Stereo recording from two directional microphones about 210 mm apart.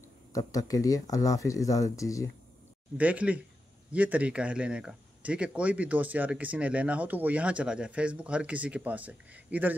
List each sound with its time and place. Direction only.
0.3 s speech: 15° left (ahead or behind)
3.0 s speech: 5° right (ahead or behind)